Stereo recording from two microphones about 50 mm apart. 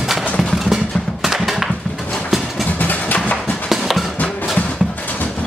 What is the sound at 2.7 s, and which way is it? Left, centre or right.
Vehicle, left.